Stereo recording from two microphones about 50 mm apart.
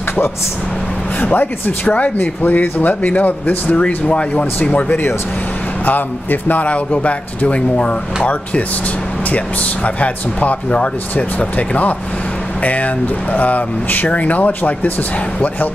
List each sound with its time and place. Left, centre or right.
1.2 s speech: left
3.6 s a man's voice: left
5.9 s a man's voice: left
9.9 s a man's voice: left